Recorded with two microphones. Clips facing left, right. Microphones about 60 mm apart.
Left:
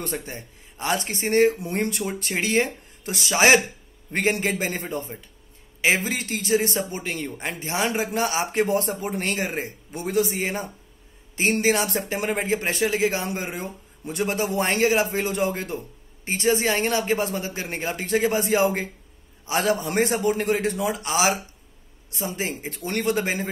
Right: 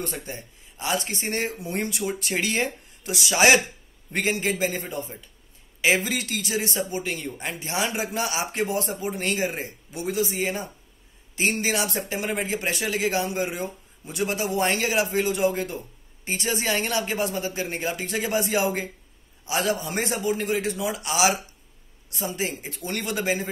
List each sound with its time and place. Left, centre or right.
0.2 s a man's voice: left
11.6 s a man's voice: left